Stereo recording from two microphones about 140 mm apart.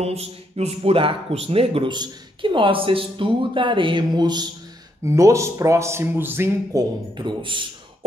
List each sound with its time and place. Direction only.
0.0 s a man's voice: 50° right (ahead or behind)